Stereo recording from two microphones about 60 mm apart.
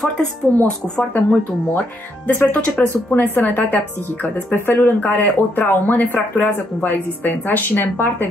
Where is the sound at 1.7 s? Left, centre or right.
Left.